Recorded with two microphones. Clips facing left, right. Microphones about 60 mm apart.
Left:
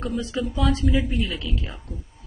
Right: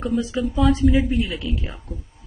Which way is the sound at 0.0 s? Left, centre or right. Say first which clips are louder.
Right 4 dB; centre.